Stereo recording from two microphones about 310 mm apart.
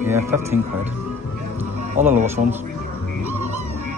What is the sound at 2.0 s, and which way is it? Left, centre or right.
Speech, right.